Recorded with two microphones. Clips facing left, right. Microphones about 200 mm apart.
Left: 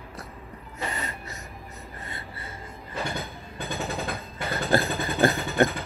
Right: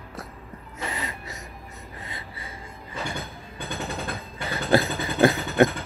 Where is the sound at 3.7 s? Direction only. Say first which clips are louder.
Left 1 dB; centre (ahead or behind).